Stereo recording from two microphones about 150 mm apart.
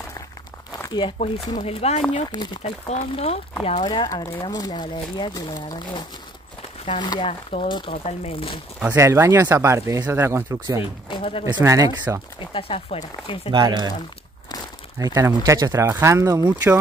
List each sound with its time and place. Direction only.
0.8 s speech: 30° left (ahead or behind)
1.6 s speech: 45° left (ahead or behind)
3.8 s speech: 30° left (ahead or behind)
8.7 s speech: 15° right (ahead or behind)
11.1 s speech: 35° left (ahead or behind)
11.4 s speech: 20° right (ahead or behind)
12.4 s speech: 40° left (ahead or behind)
13.5 s speech: 30° right (ahead or behind)
15.0 s speech: 20° right (ahead or behind)